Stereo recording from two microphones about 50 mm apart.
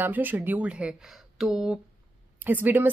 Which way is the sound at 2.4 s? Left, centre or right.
Right.